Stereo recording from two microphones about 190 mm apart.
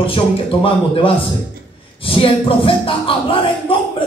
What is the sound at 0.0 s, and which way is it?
Speech, 30° left (ahead or behind).